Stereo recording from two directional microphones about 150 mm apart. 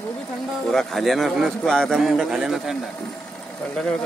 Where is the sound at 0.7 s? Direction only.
Centre (ahead or behind).